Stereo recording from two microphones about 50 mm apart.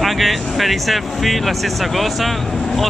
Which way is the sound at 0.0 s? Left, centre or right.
Centre.